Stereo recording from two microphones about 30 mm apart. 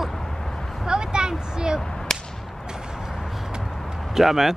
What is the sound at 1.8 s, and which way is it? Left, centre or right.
Whip, centre.